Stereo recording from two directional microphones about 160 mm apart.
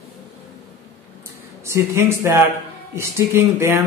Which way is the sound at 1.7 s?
15° right (ahead or behind).